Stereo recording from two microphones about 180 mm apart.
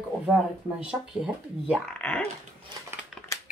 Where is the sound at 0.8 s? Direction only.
5° right (ahead or behind).